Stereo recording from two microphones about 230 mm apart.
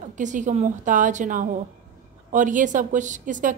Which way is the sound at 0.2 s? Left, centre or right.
Right.